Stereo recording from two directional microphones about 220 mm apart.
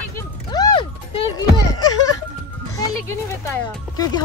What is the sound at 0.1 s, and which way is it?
Music, 20° left (ahead or behind).